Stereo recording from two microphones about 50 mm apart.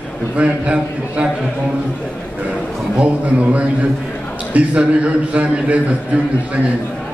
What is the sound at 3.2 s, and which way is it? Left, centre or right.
A man's voice, right.